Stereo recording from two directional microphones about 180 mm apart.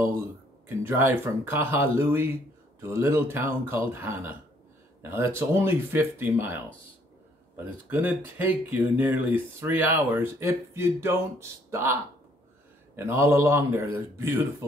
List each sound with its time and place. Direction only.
0.7 s speech: 15° right (ahead or behind)